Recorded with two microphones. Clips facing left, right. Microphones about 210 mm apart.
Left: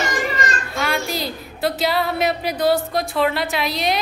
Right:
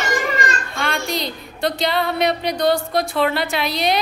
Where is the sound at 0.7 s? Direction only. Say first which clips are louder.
Left 2 dB; 5° left (ahead or behind).